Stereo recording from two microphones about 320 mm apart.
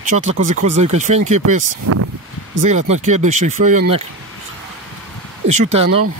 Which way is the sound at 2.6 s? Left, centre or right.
Right.